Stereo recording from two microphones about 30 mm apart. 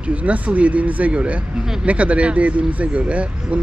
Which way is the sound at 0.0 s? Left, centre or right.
Right.